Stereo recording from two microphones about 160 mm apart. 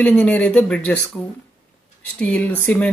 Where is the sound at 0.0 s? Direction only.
10° left (ahead or behind).